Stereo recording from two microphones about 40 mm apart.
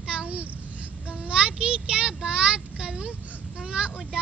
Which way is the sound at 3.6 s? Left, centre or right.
Right.